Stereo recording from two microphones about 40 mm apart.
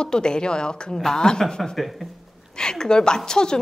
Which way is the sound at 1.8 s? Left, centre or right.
Centre.